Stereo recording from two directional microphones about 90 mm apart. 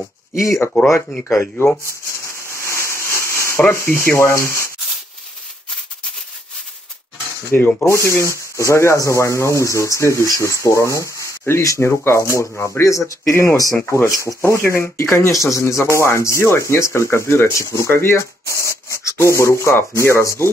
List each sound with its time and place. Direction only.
0.4 s speech: 35° left (ahead or behind)
2.2 s a sound: 30° left (ahead or behind)
3.7 s speech: 30° left (ahead or behind)
7.5 s speech: 25° left (ahead or behind)